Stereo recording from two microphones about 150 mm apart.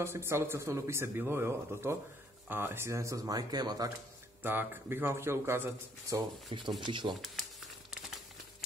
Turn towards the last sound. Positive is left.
turn(degrees=0)  # may be behind; listen again after turning